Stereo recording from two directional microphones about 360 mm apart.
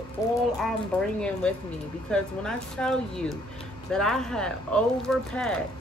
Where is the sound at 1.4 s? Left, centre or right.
Centre.